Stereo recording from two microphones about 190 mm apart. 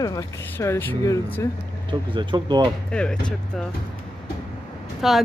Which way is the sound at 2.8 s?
5° left (ahead or behind).